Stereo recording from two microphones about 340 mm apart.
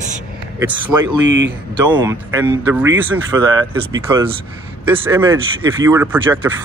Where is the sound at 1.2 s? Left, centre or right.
Right.